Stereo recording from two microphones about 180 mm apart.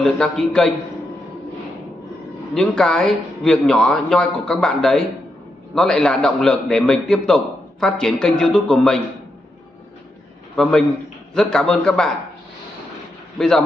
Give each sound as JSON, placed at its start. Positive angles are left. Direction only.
{"t": 0.0, "sound": "a man's voice", "side_deg": 5}
{"t": 2.5, "sound": "a man's voice", "side_deg": 5}
{"t": 10.5, "sound": "a man's voice", "side_deg": 5}
{"t": 13.4, "sound": "a man's voice", "side_deg": 0}